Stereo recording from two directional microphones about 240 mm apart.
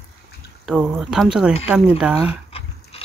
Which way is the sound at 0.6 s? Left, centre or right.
Centre.